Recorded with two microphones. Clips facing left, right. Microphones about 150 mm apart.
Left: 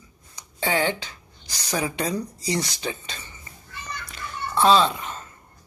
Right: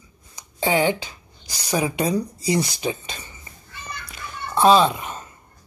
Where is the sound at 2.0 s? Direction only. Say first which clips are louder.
Right 5 dB; 10° right (ahead or behind).